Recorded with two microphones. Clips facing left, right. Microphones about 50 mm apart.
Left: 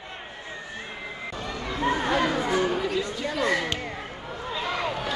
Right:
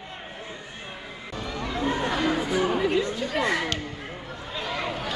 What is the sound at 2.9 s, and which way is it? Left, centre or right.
Chatter, right.